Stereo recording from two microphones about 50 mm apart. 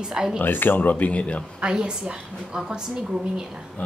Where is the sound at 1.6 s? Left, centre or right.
Centre.